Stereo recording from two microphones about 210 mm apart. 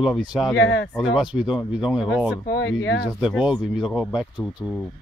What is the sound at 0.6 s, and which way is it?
Speech, 60° left (ahead or behind).